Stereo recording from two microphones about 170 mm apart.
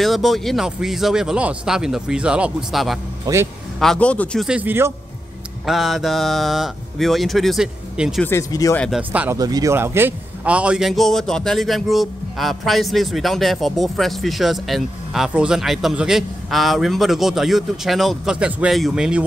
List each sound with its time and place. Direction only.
0.0 s a man's voice: centre (ahead or behind)
3.3 s a man's voice: 25° right (ahead or behind)
3.8 s a man's voice: 5° left (ahead or behind)
4.5 s a man's voice: 10° right (ahead or behind)
5.7 s a man's voice: centre (ahead or behind)
8.2 s speech: 15° left (ahead or behind)
8.7 s a man's voice: 5° left (ahead or behind)
9.1 s a man's voice: 10° right (ahead or behind)
9.4 s a man's voice: 20° right (ahead or behind); by 19.2 s 5° right (ahead or behind)